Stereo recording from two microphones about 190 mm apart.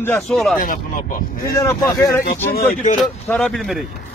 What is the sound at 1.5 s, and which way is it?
Speech, 20° left (ahead or behind).